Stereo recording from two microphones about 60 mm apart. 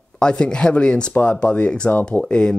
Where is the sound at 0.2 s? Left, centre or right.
Centre.